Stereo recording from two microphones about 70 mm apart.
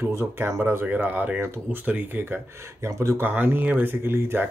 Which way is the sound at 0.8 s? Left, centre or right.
Right.